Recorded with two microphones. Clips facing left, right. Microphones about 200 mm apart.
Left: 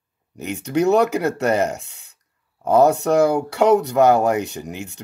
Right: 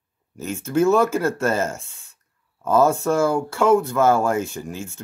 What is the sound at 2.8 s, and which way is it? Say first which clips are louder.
Speech: left 3 dB; 65° left (ahead or behind).